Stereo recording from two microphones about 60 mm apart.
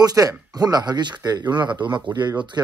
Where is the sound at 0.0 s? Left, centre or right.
Right.